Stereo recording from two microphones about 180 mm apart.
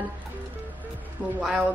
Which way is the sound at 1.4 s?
5° right (ahead or behind).